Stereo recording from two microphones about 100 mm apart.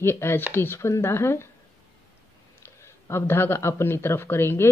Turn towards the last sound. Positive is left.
turn(degrees=25)  # may be behind; listen again after turning